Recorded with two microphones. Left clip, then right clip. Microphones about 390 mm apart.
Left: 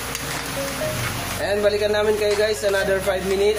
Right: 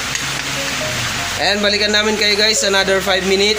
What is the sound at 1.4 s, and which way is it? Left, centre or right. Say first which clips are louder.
Speech: right 4 dB; left.